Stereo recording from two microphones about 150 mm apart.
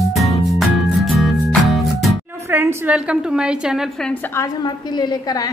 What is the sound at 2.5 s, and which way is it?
A woman's voice, 15° right (ahead or behind).